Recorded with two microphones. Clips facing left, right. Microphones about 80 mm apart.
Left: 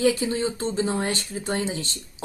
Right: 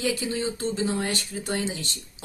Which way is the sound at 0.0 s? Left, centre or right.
Left.